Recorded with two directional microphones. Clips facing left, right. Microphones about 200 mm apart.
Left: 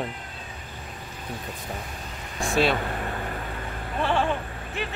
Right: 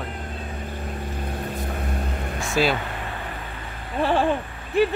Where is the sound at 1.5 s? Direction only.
60° right (ahead or behind).